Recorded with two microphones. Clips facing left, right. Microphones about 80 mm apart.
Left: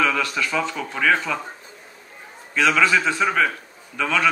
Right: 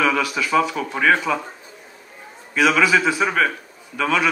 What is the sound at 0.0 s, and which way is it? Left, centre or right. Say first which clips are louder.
A man's voice: right 2 dB; centre.